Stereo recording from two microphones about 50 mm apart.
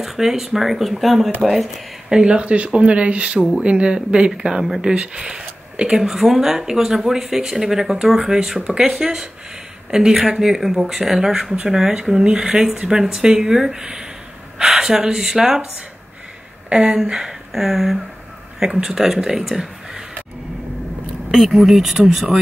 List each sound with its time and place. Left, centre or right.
0.0 s speech: centre
16.6 s speech: centre
21.3 s speech: centre